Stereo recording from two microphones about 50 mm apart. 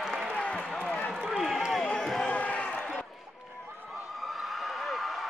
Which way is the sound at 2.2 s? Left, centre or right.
Left.